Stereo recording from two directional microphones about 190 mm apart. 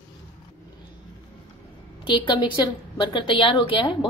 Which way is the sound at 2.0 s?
25° left (ahead or behind).